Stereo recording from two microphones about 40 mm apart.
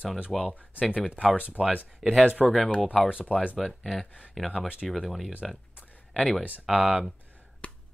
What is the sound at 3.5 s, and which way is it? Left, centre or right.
Speech, centre.